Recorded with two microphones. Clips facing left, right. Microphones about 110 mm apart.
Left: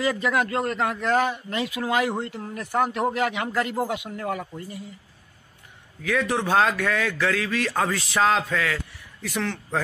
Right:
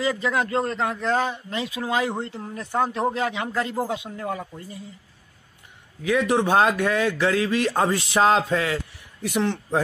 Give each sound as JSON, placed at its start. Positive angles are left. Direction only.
{"t": 0.0, "sound": "a man's voice", "side_deg": -20}
{"t": 6.0, "sound": "a man's voice", "side_deg": -20}